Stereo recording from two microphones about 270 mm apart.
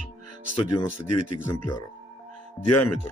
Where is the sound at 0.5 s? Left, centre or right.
Left.